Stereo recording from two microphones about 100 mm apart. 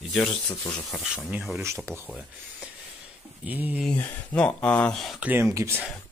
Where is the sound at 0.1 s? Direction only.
5° left (ahead or behind).